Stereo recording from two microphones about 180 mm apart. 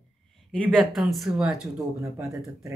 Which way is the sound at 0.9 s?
Centre (ahead or behind).